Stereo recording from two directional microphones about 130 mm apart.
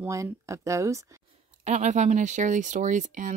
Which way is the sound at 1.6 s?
65° right (ahead or behind).